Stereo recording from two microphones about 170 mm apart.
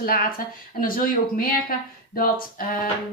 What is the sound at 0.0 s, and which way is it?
Speech, 55° left (ahead or behind).